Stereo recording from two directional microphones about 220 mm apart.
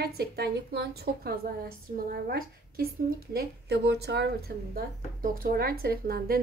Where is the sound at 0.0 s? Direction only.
45° right (ahead or behind).